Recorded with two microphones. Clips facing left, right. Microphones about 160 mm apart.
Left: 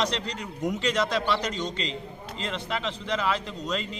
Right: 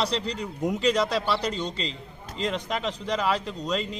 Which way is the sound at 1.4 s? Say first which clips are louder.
Right 1 dB; 35° right (ahead or behind).